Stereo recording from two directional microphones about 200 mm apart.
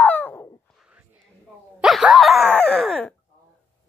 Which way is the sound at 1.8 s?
Centre (ahead or behind).